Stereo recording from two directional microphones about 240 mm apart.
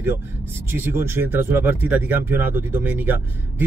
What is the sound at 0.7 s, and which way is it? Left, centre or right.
Speech, centre.